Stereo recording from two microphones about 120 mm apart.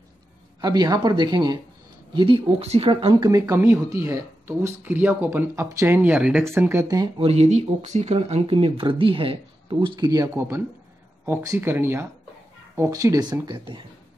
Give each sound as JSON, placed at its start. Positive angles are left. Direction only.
{"t": 0.6, "sound": "speech", "side_deg": -35}
{"t": 2.6, "sound": "speech", "side_deg": -55}
{"t": 3.3, "sound": "speech", "side_deg": -25}
{"t": 7.2, "sound": "speech", "side_deg": -60}